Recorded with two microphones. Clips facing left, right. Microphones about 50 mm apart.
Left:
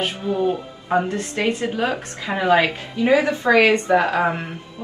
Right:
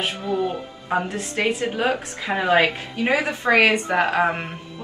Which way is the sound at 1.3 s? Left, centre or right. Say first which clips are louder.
Right 1 dB; right.